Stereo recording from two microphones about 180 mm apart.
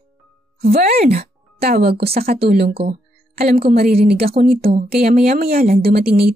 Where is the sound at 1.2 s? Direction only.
60° right (ahead or behind).